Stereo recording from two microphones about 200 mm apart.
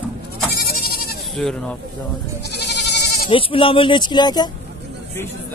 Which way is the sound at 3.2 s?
25° left (ahead or behind).